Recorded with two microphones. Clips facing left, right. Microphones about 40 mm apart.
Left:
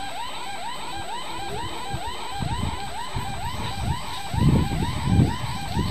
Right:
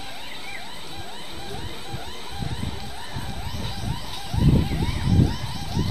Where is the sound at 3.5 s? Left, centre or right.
Left.